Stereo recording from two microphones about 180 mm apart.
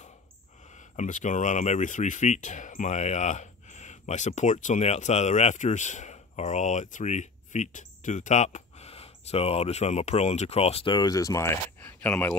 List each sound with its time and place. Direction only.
0.9 s speech: 45° left (ahead or behind); by 12.4 s 10° left (ahead or behind)